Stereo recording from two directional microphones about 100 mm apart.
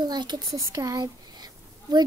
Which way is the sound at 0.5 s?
35° right (ahead or behind).